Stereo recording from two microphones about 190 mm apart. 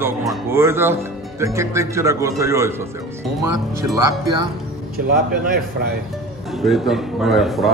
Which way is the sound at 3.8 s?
20° right (ahead or behind).